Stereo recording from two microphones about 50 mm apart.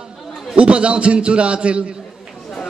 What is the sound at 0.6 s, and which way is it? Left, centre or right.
A man's voice, right.